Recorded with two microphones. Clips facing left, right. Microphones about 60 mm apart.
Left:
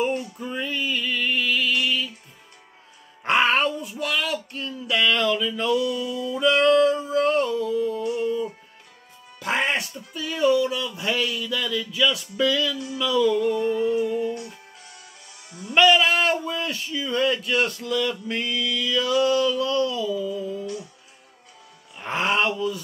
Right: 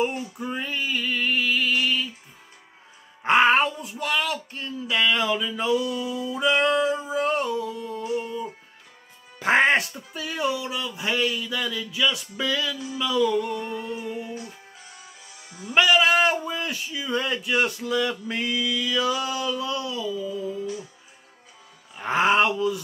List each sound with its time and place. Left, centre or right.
0.0 s music: centre
3.3 s music: centre
4.0 s a sound: centre
9.4 s music: right
9.9 s speech: centre
15.5 s speech: centre
17.1 s speech: right
17.4 s speech: centre
21.9 s speech: centre